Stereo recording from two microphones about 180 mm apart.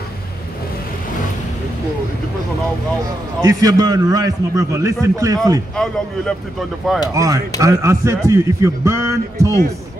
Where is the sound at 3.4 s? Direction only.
20° right (ahead or behind).